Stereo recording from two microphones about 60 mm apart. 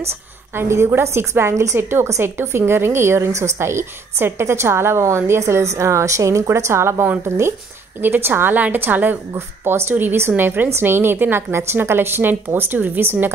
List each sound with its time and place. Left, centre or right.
0.6 s a woman's voice: right
1.8 s a woman's voice: right
2.0 s a woman's voice: right
3.3 s a woman's voice: right
5.5 s a woman's voice: right
8.0 s a woman's voice: right